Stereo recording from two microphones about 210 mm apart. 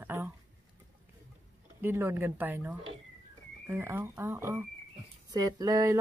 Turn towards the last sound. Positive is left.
turn(degrees=-15)  # may be behind; listen again after turning